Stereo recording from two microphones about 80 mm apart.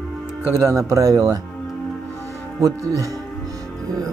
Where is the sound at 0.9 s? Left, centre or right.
Right.